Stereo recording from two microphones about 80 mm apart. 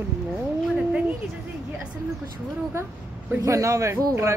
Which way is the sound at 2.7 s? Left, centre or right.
Right.